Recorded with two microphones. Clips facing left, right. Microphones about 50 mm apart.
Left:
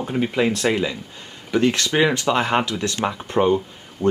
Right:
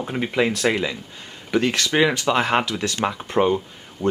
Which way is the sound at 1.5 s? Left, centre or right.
Right.